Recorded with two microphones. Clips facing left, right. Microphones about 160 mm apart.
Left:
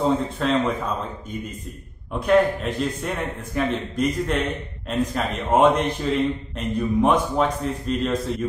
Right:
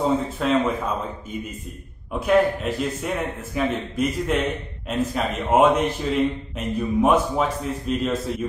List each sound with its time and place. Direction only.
0.0 s a man's voice: 5° right (ahead or behind)
2.1 s a man's voice: 5° right (ahead or behind)
6.6 s mantra: 5° right (ahead or behind)
7.0 s a man's voice: 5° right (ahead or behind)